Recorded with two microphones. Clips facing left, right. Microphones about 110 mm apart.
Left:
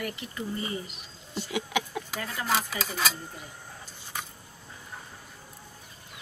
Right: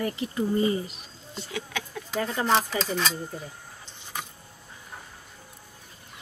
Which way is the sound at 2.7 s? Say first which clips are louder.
Right 3 dB; 5° left (ahead or behind).